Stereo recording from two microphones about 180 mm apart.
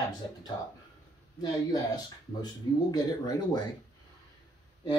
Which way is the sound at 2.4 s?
20° left (ahead or behind).